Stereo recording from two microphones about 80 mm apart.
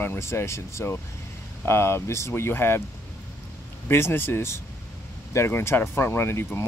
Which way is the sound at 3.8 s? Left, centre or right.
Left.